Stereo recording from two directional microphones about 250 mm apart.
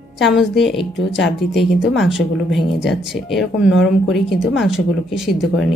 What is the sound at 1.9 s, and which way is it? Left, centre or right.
Speech, centre.